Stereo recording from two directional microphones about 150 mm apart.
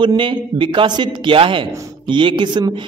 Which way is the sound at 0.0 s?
30° right (ahead or behind).